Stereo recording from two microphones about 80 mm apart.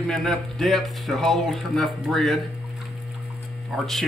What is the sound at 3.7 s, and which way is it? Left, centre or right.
Speech, centre.